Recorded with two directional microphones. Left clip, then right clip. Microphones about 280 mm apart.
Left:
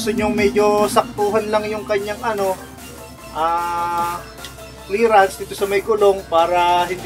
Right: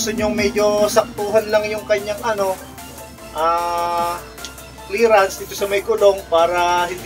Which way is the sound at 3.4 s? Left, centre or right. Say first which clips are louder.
Right 1 dB; left.